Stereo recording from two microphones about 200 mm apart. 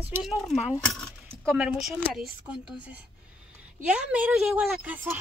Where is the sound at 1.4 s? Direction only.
5° right (ahead or behind).